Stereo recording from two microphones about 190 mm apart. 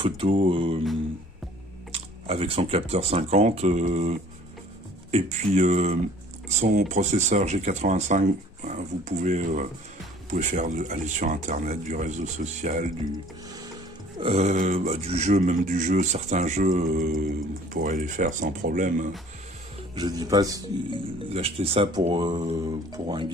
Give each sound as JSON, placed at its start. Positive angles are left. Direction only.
{"t": 0.0, "sound": "speech", "side_deg": -25}
{"t": 1.9, "sound": "speech", "side_deg": -30}
{"t": 14.2, "sound": "speech", "side_deg": -35}
{"t": 20.0, "sound": "speech", "side_deg": -20}